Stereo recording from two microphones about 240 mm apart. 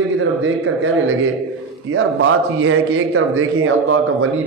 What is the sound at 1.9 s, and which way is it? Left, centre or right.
A man's voice, right.